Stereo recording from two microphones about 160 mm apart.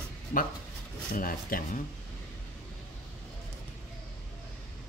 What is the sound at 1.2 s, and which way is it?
Speech, 65° left (ahead or behind).